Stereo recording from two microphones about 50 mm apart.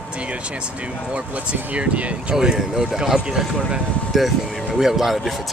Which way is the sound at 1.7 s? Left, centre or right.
Right.